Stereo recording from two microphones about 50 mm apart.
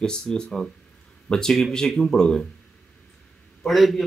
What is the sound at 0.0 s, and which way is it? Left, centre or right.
Speech, centre.